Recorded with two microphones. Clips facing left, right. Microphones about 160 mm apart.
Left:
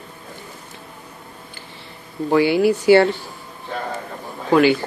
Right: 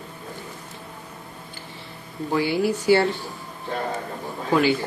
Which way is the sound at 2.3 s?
75° left (ahead or behind).